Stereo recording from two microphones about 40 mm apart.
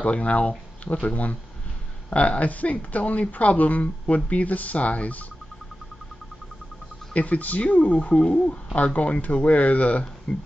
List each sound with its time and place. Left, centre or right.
0.0 s speech: left
7.2 s speech: left
10.3 s speech: centre